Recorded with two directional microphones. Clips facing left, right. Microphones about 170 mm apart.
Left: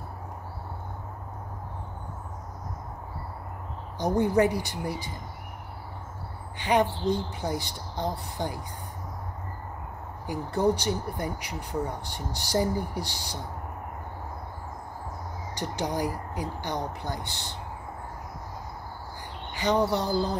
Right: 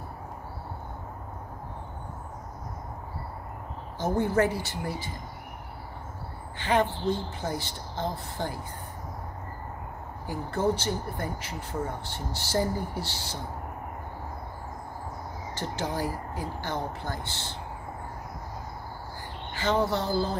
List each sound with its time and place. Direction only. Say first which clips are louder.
4.0 s speech: left 2 dB; 15° left (ahead or behind)
6.6 s speech: left 1 dB; 15° left (ahead or behind)
10.2 s speech: left 2 dB; 15° left (ahead or behind)
15.5 s speech: left 2 dB; 15° left (ahead or behind)
19.5 s speech: left 1 dB; 15° left (ahead or behind)